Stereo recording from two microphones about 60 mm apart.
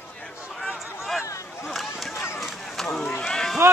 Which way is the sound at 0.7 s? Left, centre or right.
Centre.